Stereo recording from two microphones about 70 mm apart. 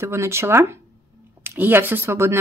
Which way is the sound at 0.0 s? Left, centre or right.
Right.